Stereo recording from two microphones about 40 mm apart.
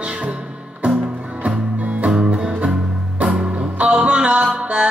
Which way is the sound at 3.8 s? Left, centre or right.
Right.